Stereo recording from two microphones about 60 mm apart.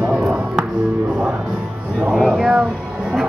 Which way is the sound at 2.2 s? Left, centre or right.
Centre.